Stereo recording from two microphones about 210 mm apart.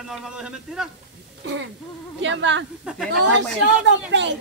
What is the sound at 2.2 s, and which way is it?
Speech, 60° right (ahead or behind).